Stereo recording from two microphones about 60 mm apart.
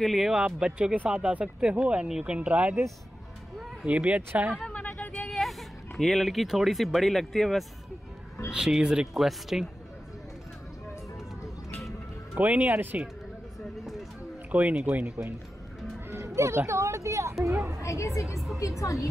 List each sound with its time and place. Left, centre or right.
0.0 s speech: centre
0.4 s speech: centre
3.8 s speech: right
4.6 s a sound: left
5.3 s speech: centre
8.5 s speech: centre
12.4 s speech: right
14.5 s speech: right
16.3 s speech: right
17.8 s a woman's voice: left